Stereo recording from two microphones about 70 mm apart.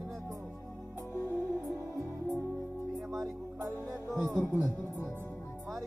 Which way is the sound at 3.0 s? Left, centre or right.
Centre.